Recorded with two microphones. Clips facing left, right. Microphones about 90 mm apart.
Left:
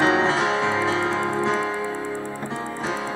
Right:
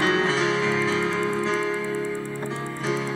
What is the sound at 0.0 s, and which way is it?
Music, 35° left (ahead or behind).